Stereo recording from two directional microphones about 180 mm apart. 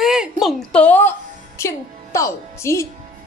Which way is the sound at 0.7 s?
10° left (ahead or behind).